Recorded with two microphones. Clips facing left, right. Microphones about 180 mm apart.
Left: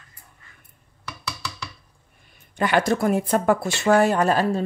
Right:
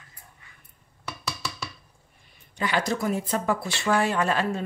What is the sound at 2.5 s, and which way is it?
Speech, 55° left (ahead or behind).